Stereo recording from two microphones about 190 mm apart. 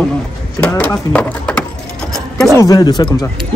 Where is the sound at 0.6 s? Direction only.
10° left (ahead or behind).